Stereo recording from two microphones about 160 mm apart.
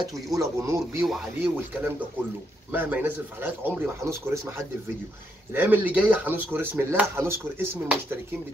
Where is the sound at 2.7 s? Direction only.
10° right (ahead or behind).